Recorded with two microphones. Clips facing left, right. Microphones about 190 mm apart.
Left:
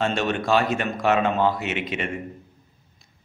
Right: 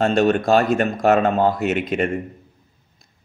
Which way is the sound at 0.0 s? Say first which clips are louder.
Right 7 dB; 40° right (ahead or behind).